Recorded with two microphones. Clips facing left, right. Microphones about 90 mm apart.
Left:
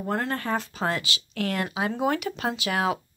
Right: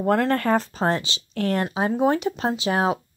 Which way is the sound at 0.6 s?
35° right (ahead or behind).